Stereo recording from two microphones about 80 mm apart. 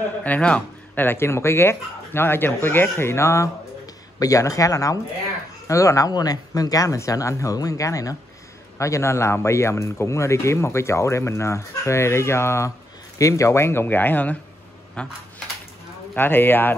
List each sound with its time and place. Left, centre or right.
0.2 s speech: centre; by 3.4 s left
3.8 s speech: left; by 15.1 s centre
16.2 s speech: left